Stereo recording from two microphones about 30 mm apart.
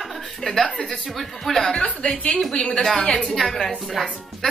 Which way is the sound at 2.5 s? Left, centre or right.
Left.